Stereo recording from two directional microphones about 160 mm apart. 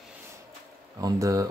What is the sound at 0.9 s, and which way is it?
Speech, 20° right (ahead or behind).